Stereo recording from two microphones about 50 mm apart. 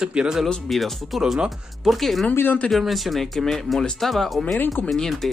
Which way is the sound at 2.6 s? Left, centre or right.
Centre.